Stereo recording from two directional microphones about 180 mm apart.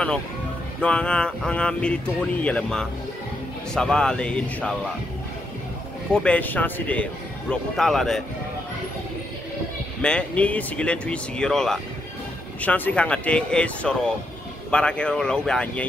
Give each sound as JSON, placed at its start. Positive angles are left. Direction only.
{"t": 0.7, "sound": "speech", "side_deg": 5}
{"t": 6.1, "sound": "a man's voice", "side_deg": 5}
{"t": 10.0, "sound": "a man's voice", "side_deg": 5}